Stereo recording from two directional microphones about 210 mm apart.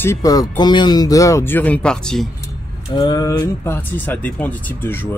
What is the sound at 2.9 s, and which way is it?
Speech, 20° left (ahead or behind).